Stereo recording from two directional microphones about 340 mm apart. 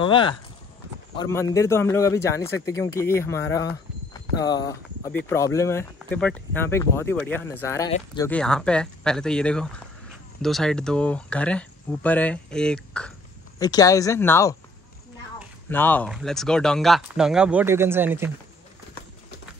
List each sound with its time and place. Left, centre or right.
0.0 s speech: centre
15.7 s speech: centre